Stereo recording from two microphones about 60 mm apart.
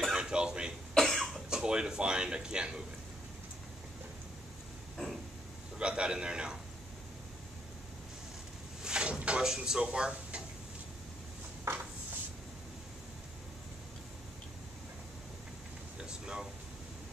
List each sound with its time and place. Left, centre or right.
0.2 s cough: centre
0.9 s cough: centre
1.5 s speech: centre
4.9 s a sound: centre
5.8 s speech: centre
8.8 s drawer open or close: centre
16.0 s air conditioning: centre